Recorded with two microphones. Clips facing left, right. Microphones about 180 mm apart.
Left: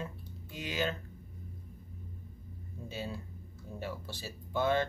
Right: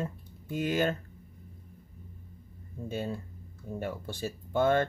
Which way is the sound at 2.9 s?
50° right (ahead or behind).